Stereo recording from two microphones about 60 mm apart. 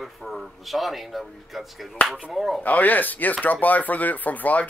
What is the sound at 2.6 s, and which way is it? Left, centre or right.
Speech, left.